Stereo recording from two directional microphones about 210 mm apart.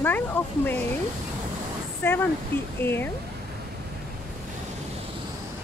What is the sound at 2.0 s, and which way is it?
Speech, 10° left (ahead or behind).